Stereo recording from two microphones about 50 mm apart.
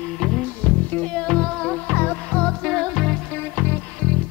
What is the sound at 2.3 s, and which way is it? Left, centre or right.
Music, centre.